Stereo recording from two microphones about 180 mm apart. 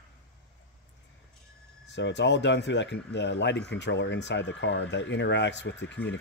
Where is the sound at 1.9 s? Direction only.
80° left.